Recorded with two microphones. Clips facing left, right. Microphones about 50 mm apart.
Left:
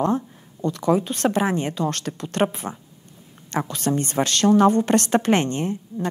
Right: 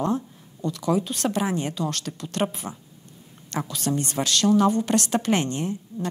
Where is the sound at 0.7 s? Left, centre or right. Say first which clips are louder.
Left 4 dB; left.